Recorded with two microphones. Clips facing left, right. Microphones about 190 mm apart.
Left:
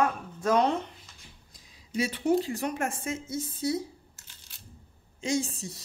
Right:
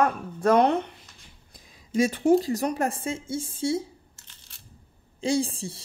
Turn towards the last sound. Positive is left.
turn(degrees=-30)  # may be behind; listen again after turning